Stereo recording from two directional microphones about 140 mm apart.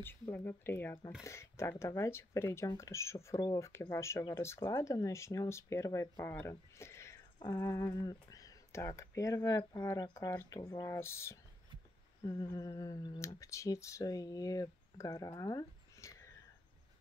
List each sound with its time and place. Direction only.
0.0 s speech: 15° left (ahead or behind)